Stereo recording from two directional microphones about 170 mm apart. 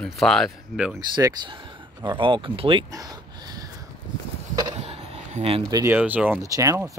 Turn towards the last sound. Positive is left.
turn(degrees=-20)  # may be behind; listen again after turning